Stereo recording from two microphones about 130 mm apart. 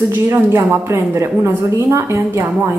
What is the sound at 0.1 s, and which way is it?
A woman's voice, 15° right (ahead or behind).